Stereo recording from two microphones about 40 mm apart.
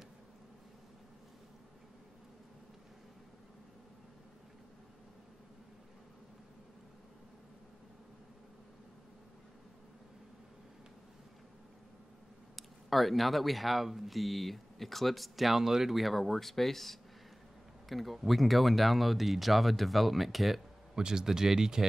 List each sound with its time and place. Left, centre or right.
12.5 s speech: centre
20.9 s speech: centre